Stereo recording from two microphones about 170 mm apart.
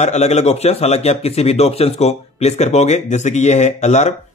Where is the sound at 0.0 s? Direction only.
40° left (ahead or behind).